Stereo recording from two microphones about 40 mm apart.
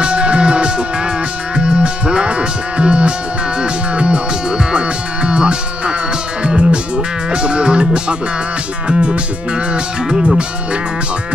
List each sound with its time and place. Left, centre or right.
0.0 s music: right
8.8 s cattle: right
10.2 s cattle: right